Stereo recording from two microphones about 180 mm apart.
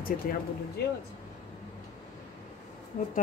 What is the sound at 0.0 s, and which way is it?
Speech, 55° left (ahead or behind).